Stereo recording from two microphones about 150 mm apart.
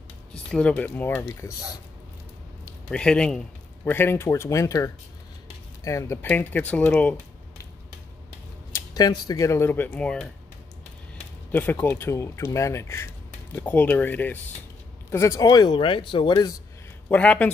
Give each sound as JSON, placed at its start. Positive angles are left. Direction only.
{"t": 0.5, "sound": "speech", "side_deg": 5}
{"t": 2.9, "sound": "speech", "side_deg": 5}
{"t": 6.2, "sound": "speech", "side_deg": 10}
{"t": 8.7, "sound": "speech", "side_deg": 25}
{"t": 11.5, "sound": "speech", "side_deg": 10}
{"t": 17.1, "sound": "speech", "side_deg": 10}